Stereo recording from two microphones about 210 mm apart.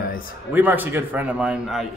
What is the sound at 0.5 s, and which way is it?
A man's voice, 10° right (ahead or behind).